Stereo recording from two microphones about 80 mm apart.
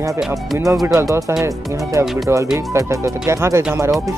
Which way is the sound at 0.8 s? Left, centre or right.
Right.